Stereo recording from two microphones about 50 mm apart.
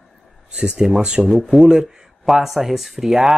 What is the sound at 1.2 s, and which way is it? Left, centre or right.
Speech, centre.